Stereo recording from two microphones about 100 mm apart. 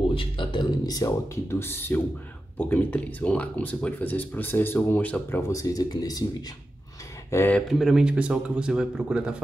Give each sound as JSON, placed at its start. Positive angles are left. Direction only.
{"t": 0.1, "sound": "a sound", "side_deg": 60}
{"t": 0.8, "sound": "speech", "side_deg": 35}
{"t": 5.5, "sound": "speech", "side_deg": 35}
{"t": 7.2, "sound": "speech", "side_deg": 25}
{"t": 7.8, "sound": "a man's voice", "side_deg": -5}